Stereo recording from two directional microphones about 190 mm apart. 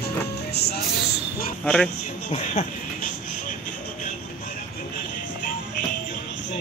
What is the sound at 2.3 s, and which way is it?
Speech, 35° left (ahead or behind).